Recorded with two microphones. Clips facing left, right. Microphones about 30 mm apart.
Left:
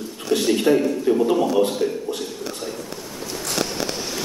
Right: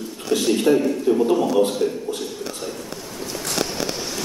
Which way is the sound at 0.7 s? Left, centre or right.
Left.